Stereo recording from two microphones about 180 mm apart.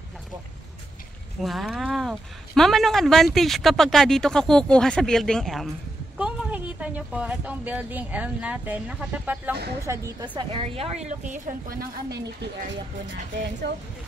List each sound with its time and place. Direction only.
1.4 s speech: centre (ahead or behind)
9.8 s a woman's voice: 25° right (ahead or behind); by 12.2 s 55° right (ahead or behind)